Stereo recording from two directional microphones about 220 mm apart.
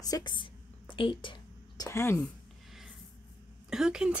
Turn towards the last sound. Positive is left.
turn(degrees=-5)  # may be behind; listen again after turning